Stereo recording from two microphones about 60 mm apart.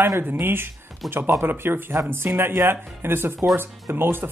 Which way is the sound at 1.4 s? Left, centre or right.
Right.